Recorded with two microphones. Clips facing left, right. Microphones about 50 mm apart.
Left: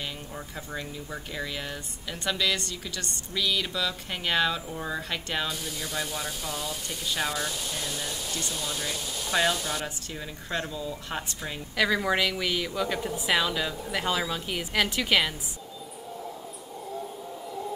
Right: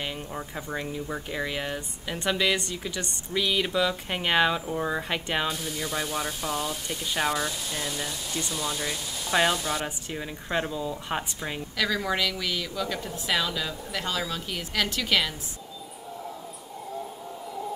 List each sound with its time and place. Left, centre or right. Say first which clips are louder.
0.0 s speech: right 3 dB; centre
11.7 s a woman's voice: left 3 dB; centre